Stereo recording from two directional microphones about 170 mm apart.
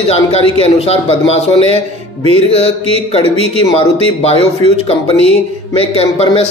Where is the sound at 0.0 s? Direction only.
35° left (ahead or behind).